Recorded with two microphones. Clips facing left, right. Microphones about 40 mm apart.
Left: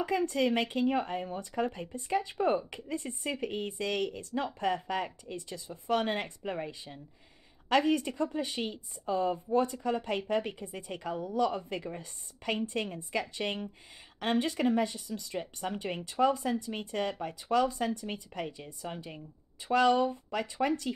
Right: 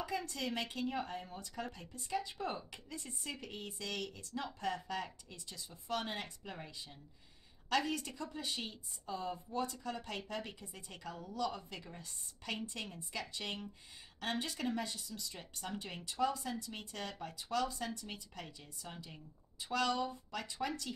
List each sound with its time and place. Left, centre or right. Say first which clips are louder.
0.0 s speech: left 11 dB; left